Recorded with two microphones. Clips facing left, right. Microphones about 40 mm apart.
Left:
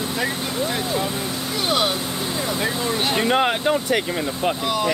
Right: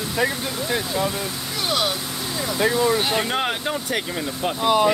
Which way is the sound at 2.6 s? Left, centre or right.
Right.